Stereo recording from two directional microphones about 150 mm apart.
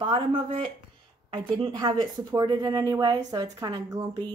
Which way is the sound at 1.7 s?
25° right (ahead or behind).